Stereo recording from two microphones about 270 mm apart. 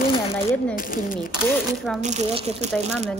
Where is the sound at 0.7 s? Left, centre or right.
Left.